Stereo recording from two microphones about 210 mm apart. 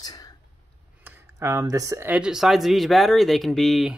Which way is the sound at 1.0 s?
10° right (ahead or behind).